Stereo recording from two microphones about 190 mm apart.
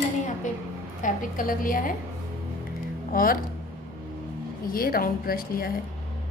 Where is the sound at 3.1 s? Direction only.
50° left (ahead or behind).